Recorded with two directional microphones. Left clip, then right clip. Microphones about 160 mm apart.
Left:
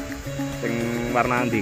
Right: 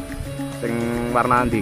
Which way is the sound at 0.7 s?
25° right (ahead or behind).